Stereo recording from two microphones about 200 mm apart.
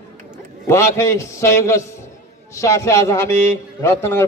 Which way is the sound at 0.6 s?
15° left (ahead or behind).